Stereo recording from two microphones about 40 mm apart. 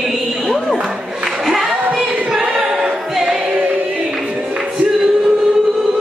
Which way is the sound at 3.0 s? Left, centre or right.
Centre.